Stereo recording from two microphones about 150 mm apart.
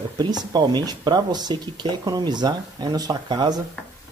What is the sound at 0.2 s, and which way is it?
Speech, 30° right (ahead or behind).